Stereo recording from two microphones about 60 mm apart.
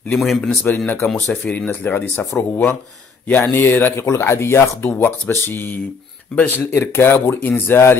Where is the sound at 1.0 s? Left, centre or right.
Left.